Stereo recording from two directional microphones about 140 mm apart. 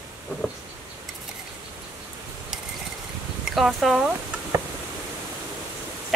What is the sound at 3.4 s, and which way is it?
Speech, centre (ahead or behind).